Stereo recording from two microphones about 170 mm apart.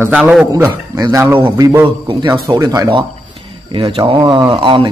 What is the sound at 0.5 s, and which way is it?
A man's voice, 20° right (ahead or behind).